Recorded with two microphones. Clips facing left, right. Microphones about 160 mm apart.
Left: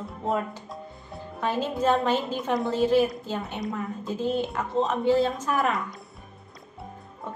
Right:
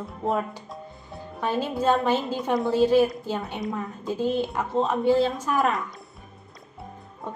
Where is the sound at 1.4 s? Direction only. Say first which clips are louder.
Right 1 dB; 10° right (ahead or behind).